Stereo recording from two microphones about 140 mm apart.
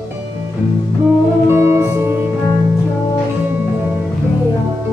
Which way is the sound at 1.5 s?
20° right (ahead or behind).